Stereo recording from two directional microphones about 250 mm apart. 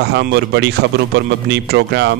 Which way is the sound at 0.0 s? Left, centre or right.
Right.